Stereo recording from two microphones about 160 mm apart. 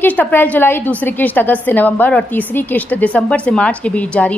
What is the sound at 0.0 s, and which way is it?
A woman's voice, 10° left (ahead or behind).